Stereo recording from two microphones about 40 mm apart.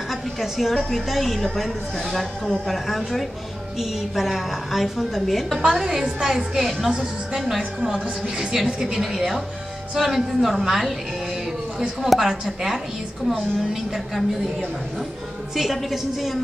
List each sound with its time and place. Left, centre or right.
0.1 s a sound: centre
0.9 s a woman's voice: centre
6.0 s a woman's voice: centre
6.3 s a woman's voice: centre
7.9 s a woman's voice: centre
8.8 s a woman's voice: centre
12.1 s a woman's voice: centre
15.5 s a woman's voice: centre